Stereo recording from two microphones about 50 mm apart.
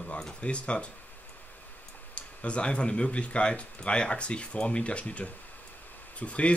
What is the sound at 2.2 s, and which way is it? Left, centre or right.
Speech, left.